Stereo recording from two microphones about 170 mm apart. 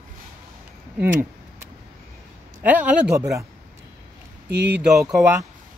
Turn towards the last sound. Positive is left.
turn(degrees=-10)  # may be behind; listen again after turning